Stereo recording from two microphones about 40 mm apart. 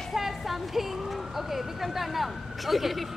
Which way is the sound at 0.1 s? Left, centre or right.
Centre.